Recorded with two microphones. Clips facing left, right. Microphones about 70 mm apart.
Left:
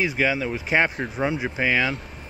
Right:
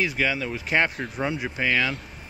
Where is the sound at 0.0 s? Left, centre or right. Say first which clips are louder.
Left 2 dB; centre.